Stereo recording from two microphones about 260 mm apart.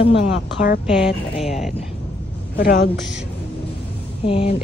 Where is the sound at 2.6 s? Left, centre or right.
Left.